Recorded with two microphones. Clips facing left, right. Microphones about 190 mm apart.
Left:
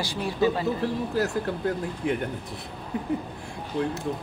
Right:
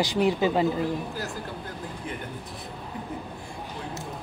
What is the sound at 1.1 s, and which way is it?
Speech, 70° left (ahead or behind).